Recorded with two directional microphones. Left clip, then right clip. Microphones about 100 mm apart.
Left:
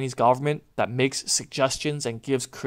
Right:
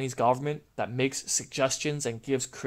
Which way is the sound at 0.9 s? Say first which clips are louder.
Left 5 dB; 25° left (ahead or behind).